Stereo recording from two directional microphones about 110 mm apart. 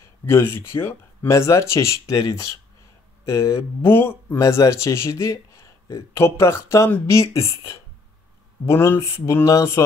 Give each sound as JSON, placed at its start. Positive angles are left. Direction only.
{"t": 0.2, "sound": "speech", "side_deg": 20}
{"t": 8.6, "sound": "speech", "side_deg": 20}